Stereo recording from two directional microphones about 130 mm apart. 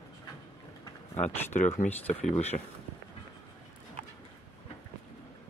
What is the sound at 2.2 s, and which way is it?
Speech, 55° left (ahead or behind).